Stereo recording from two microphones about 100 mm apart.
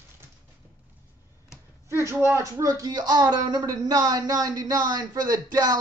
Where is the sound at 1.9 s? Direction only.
25° right (ahead or behind).